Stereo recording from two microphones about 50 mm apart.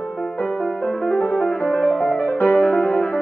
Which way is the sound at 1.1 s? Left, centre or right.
Left.